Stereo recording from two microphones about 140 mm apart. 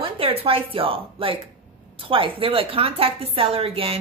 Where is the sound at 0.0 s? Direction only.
40° right (ahead or behind).